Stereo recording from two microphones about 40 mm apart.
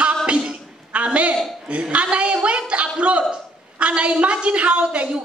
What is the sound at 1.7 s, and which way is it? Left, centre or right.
A woman's voice, right.